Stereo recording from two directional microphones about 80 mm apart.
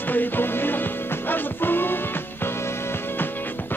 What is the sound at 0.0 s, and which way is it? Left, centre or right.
Music, left.